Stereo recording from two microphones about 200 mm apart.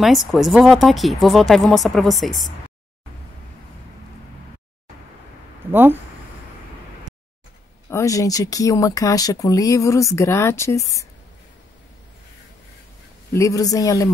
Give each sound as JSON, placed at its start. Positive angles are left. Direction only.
{"t": 0.0, "sound": "speech", "side_deg": 0}
{"t": 5.7, "sound": "speech", "side_deg": -10}
{"t": 7.9, "sound": "speech", "side_deg": 15}
{"t": 13.3, "sound": "speech", "side_deg": 15}